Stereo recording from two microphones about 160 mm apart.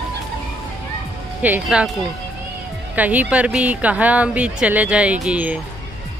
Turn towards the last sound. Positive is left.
turn(degrees=-5)  # may be behind; listen again after turning